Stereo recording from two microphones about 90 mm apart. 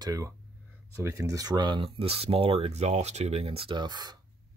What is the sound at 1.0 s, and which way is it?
Speech, 35° right (ahead or behind).